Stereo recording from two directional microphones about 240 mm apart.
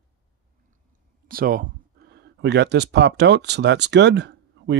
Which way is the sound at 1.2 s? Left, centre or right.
Right.